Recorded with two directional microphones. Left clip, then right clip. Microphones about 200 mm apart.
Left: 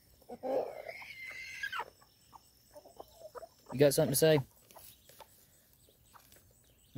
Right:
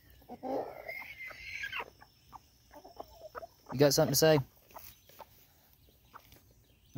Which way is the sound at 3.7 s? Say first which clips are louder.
Right 1 dB; 15° left (ahead or behind).